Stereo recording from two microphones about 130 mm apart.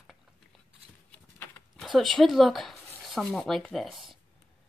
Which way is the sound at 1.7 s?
Centre (ahead or behind).